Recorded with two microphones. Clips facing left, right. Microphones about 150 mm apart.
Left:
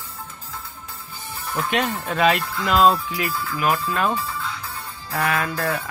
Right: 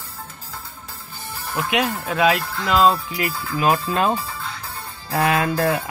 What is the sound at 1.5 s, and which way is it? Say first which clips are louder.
Speech: right 1 dB; 5° right (ahead or behind).